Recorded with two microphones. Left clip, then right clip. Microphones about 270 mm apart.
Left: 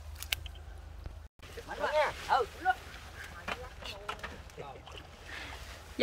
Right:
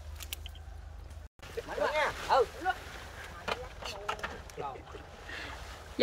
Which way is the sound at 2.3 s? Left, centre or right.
Right.